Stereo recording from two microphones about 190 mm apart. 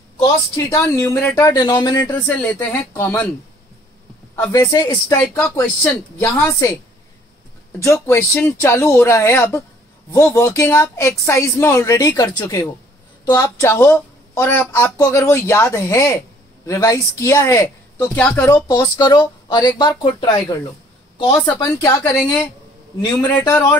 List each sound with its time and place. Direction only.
0.2 s speech: 15° left (ahead or behind)
4.4 s speech: 15° left (ahead or behind)
5.4 s speech: 10° left (ahead or behind)
7.8 s speech: 15° left (ahead or behind)
18.7 s speech: 20° left (ahead or behind)